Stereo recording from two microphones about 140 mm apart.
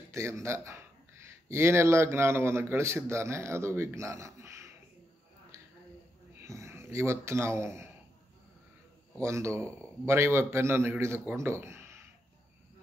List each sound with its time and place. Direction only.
0.1 s speech: 20° right (ahead or behind)
6.4 s speech: 20° right (ahead or behind)
9.2 s a man's voice: 20° right (ahead or behind)
11.3 s a sound: 20° right (ahead or behind)